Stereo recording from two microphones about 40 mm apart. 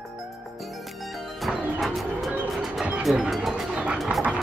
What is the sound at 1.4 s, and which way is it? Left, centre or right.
Music, centre.